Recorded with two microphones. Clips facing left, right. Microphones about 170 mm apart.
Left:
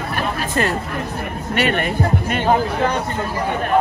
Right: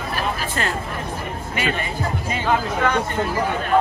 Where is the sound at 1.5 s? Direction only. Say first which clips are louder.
Left 6 dB; 65° left (ahead or behind).